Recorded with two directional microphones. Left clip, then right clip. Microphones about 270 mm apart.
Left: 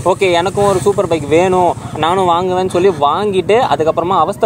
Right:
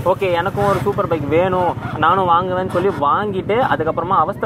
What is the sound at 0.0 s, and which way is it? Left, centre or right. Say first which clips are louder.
Speech: left 4 dB; left.